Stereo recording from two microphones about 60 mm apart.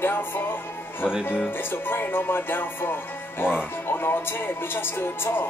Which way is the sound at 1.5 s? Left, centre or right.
Left.